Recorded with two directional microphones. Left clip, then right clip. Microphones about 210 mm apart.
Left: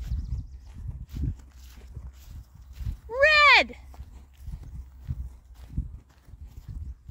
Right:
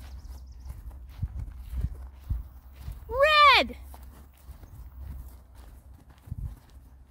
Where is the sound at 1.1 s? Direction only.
55° left (ahead or behind).